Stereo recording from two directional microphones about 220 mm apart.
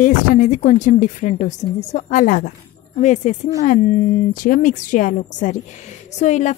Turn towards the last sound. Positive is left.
turn(degrees=30)  # may be behind; listen again after turning